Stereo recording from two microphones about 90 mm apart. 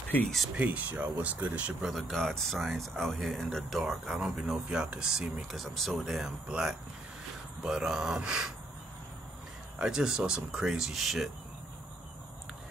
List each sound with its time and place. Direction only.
0.6 s speech: 20° right (ahead or behind)
1.8 s speech: centre (ahead or behind)
9.8 s speech: 5° right (ahead or behind)